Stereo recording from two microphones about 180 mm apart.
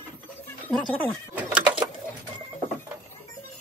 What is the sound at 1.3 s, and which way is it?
Bird, 10° right (ahead or behind).